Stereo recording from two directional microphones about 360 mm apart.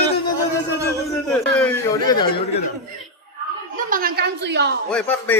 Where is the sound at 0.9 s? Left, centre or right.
Centre.